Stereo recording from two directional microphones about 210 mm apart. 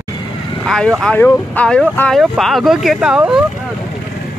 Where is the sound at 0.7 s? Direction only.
Centre (ahead or behind).